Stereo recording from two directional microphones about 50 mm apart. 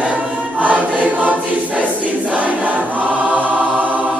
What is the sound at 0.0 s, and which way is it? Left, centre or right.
Choir, right.